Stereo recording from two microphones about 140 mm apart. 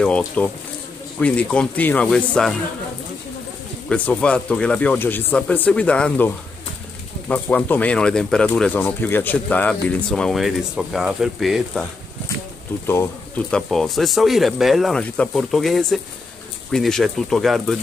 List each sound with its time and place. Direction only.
0.4 s speech: 10° left (ahead or behind)
3.9 s speech: 10° left (ahead or behind)
12.8 s speech: 15° left (ahead or behind)
13.5 s speech: 5° left (ahead or behind)